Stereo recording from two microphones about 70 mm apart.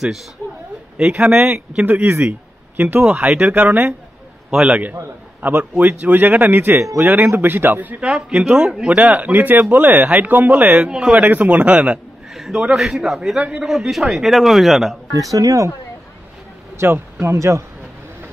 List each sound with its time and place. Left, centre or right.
0.9 s speech: centre
1.5 s speech: centre
3.2 s speech: centre
4.5 s speech: centre
5.4 s speech: right
8.0 s speech: centre
9.2 s speech: right
10.9 s speech: centre
11.2 s speech: right
12.4 s speech: centre
13.4 s speech: centre
13.7 s speech: centre
15.1 s speech: right
16.7 s speech: right